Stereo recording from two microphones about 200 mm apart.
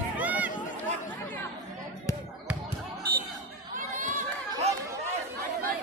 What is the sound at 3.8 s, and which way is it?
Chatter, 40° right (ahead or behind).